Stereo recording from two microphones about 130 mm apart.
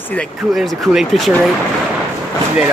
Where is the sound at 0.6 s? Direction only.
Centre (ahead or behind).